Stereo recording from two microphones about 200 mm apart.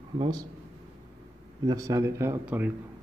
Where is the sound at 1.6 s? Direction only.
20° right (ahead or behind).